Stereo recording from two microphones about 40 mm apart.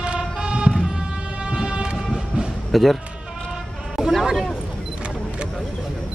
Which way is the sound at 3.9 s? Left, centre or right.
Centre.